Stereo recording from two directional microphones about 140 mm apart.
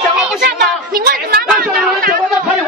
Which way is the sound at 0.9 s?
90° right.